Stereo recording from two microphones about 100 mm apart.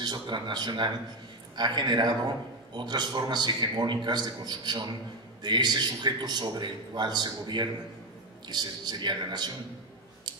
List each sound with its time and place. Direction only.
0.0 s a man's voice: 45° right (ahead or behind)